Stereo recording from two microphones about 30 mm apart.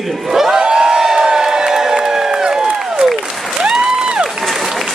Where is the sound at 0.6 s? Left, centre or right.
Right.